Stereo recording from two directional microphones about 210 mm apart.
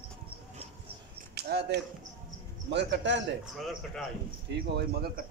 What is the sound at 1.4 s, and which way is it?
A man's voice, 50° right (ahead or behind).